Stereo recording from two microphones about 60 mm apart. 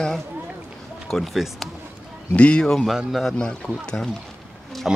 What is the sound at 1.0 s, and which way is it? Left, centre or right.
Speech, centre.